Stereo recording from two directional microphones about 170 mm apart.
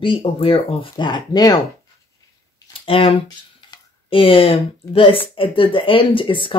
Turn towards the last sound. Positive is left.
turn(degrees=30)  # may be behind; listen again after turning